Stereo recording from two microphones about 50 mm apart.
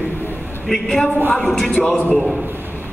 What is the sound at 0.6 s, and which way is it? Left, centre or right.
Speech, centre.